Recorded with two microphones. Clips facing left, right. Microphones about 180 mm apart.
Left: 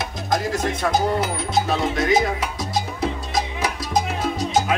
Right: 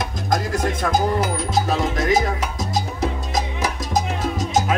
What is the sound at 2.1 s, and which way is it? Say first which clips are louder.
Salsa music: even; 45° right (ahead or behind).